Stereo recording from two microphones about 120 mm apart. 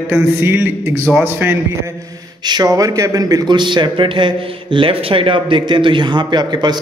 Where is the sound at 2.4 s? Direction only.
35° right (ahead or behind).